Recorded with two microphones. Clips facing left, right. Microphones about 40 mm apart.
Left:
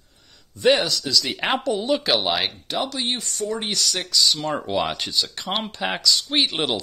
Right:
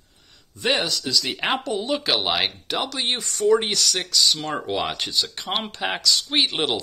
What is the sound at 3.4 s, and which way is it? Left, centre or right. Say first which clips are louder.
Speech: right 10 dB; right.